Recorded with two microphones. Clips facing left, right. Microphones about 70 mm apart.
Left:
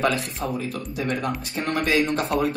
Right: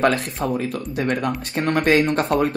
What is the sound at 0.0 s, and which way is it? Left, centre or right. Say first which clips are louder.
Speech: right 4 dB; right.